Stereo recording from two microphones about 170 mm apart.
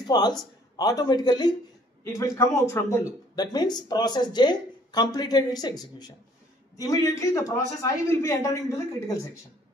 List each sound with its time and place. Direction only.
0.0 s a man's voice: 25° left (ahead or behind)